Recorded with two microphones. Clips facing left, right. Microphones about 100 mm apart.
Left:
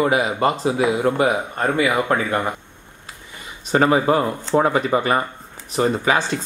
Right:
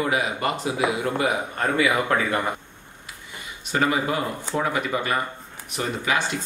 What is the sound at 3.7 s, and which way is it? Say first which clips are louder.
Speech: left 7 dB; 35° left (ahead or behind).